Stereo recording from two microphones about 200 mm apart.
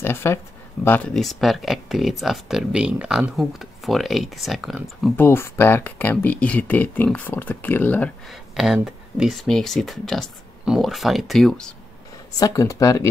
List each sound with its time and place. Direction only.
0.0 s speech: 10° left (ahead or behind)
5.1 s speech: 10° left (ahead or behind)
12.4 s speech: 15° left (ahead or behind)